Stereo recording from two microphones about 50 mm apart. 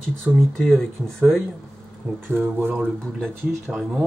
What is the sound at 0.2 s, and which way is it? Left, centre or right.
Speech, centre.